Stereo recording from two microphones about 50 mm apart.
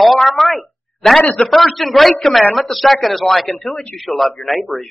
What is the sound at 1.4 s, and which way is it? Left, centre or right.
Speech, centre.